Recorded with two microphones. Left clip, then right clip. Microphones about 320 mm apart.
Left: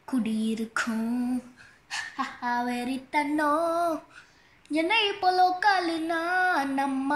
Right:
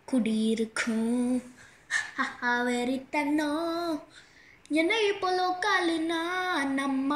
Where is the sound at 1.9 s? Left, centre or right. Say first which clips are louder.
Right 3 dB; centre.